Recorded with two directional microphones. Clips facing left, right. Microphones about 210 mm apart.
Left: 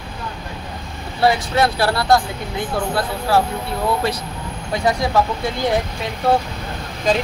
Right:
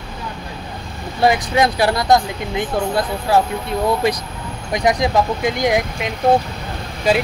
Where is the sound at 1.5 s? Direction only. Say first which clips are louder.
Right 2 dB; 15° right (ahead or behind).